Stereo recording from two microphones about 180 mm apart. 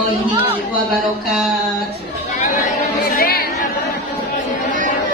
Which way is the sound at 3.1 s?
55° left (ahead or behind).